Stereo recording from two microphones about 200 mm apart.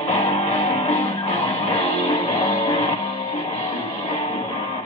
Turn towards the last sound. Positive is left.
turn(degrees=30)  # may be behind; listen again after turning